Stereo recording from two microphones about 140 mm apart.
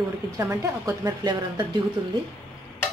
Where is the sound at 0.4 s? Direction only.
20° right (ahead or behind).